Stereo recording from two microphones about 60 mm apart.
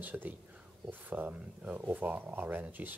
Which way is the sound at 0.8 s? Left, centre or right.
Right.